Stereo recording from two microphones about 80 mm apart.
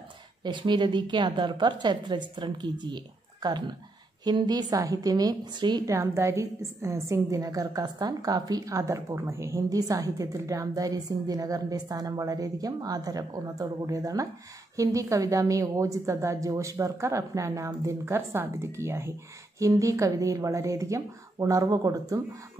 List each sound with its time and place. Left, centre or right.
0.4 s a woman's voice: right
5.9 s a woman's voice: right